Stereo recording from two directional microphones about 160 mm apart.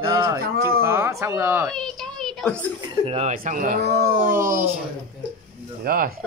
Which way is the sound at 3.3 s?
55° right (ahead or behind).